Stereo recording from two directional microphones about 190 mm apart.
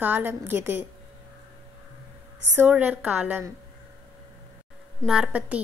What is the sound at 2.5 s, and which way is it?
A woman's voice, 10° right (ahead or behind).